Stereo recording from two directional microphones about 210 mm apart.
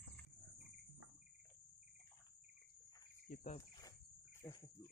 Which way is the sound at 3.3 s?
35° left (ahead or behind).